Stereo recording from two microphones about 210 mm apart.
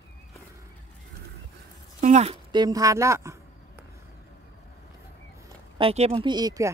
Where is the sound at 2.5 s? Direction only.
20° right (ahead or behind).